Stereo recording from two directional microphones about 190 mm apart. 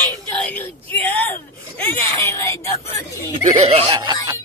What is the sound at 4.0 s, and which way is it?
Speech, 20° right (ahead or behind).